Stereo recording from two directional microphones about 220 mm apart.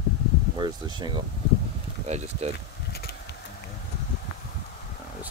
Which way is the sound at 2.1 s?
30° right (ahead or behind).